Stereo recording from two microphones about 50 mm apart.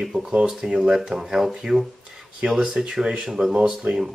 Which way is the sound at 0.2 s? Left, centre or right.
Centre.